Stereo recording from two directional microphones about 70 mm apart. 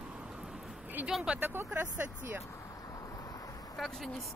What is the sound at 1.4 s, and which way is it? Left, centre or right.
Speech, right.